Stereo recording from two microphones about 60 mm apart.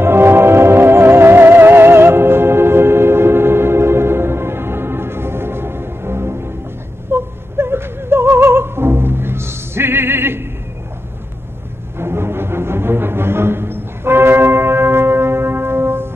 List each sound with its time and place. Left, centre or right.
0.0 s music: right
12.0 s music: right